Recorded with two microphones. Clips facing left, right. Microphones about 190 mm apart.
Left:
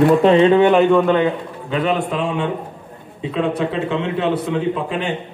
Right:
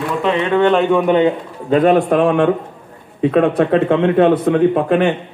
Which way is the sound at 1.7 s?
50° right (ahead or behind).